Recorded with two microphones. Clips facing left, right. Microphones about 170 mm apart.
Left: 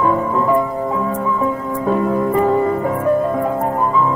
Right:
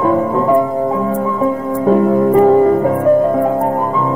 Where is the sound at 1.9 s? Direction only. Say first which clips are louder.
Right 6 dB; 40° right (ahead or behind).